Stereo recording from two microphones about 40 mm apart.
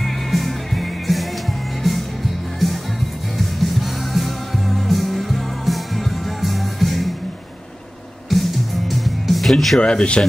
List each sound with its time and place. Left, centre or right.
0.0 s music: centre
3.3 s music: centre
8.3 s music: centre
9.8 s speech: left